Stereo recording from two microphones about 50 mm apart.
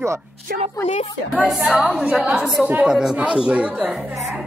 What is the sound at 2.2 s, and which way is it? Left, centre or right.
Speech, right.